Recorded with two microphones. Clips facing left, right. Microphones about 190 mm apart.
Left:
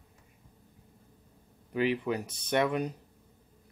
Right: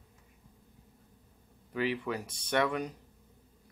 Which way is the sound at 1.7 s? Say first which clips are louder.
Left 4 dB; 20° left (ahead or behind).